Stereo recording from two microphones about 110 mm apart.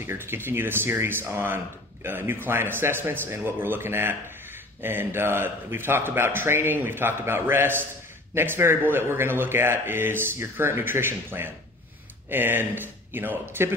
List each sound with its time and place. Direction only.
0.0 s speech: 20° right (ahead or behind)